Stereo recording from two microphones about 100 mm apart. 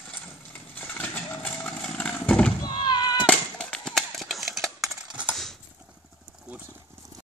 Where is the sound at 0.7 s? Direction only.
15° left (ahead or behind).